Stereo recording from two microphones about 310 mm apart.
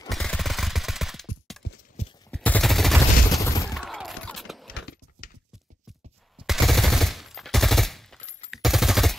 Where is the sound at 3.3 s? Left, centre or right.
Centre.